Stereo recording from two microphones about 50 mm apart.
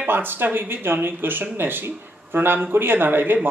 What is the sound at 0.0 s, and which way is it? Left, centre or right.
Speech, right.